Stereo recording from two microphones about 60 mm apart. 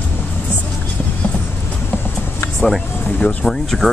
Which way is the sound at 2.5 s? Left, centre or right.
Centre.